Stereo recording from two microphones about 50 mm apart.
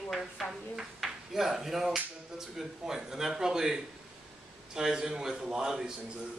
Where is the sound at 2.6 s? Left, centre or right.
Centre.